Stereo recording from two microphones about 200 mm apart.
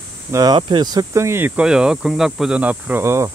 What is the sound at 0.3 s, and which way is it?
Speech, 20° right (ahead or behind).